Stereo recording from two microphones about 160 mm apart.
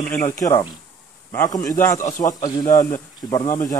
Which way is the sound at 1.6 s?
15° left (ahead or behind).